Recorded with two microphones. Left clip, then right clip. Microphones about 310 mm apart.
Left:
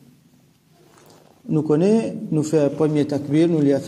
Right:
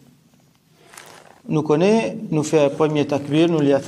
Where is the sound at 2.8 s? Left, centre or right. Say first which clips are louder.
Right 1 dB; centre.